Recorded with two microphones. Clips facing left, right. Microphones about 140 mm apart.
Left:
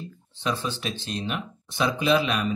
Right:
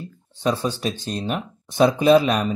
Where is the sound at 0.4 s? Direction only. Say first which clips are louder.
Right 6 dB; 40° right (ahead or behind).